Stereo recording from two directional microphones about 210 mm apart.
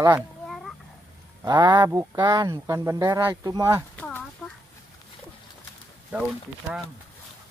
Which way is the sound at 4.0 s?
5° left (ahead or behind).